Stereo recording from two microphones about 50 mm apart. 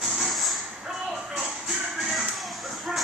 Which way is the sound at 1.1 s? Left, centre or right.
Centre.